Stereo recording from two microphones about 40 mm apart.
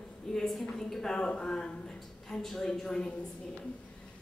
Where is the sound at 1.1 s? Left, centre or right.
Left.